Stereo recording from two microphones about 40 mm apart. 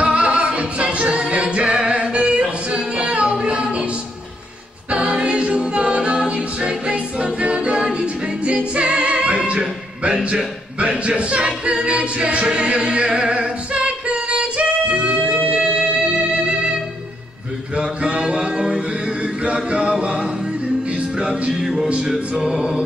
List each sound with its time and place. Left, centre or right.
0.0 s music: right
1.4 s singing: right
4.9 s a capella: right
8.9 s music: right
9.6 s music: centre
10.2 s a capella: right
17.7 s mantra: right
18.2 s music: centre
19.7 s singing: right
22.4 s music: centre